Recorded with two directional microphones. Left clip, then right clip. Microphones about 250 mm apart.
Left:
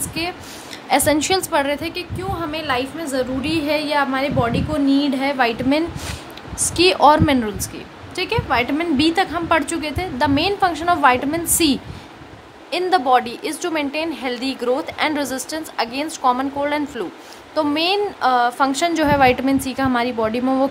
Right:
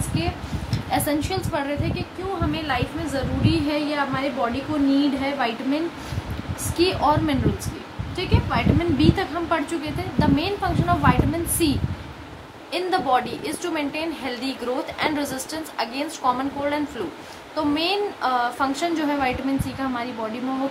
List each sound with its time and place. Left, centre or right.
0.8 s a woman's voice: left
6.8 s a woman's voice: left
12.7 s a woman's voice: left